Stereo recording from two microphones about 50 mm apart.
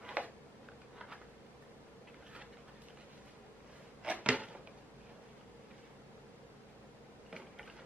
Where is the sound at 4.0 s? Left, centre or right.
Right.